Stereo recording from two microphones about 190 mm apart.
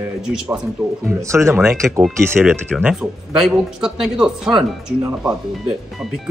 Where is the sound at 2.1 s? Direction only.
10° right (ahead or behind).